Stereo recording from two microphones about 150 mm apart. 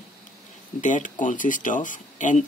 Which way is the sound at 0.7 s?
55° left (ahead or behind).